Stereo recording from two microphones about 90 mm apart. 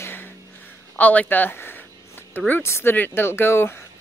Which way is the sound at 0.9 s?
20° left (ahead or behind).